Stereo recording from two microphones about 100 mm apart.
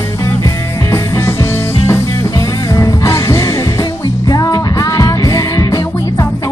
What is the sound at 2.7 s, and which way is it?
Music, 30° left (ahead or behind).